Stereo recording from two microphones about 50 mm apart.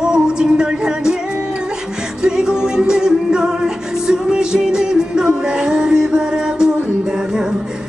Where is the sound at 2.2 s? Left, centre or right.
Centre.